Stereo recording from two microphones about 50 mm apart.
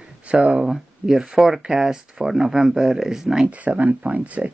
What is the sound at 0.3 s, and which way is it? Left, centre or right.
Speech, right.